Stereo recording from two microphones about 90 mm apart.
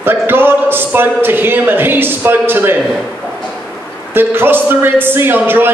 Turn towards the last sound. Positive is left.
turn(degrees=-25)  # may be behind; listen again after turning